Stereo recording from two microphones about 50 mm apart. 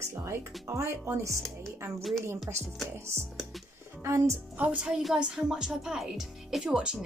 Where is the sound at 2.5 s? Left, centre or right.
Right.